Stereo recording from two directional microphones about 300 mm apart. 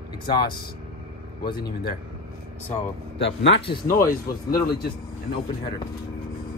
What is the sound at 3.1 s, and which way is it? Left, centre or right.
Speech, left.